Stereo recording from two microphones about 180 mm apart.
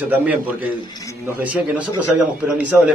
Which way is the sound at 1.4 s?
5° right (ahead or behind).